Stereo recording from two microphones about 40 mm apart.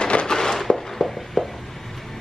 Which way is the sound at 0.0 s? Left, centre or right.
Left.